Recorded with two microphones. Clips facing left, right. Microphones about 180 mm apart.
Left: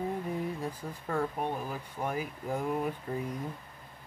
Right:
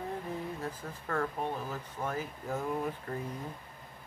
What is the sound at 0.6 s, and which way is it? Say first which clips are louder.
Speech: left 2 dB; 15° left (ahead or behind).